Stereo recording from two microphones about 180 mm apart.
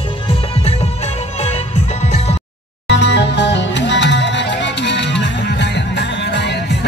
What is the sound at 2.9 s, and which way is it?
Music, 75° left (ahead or behind).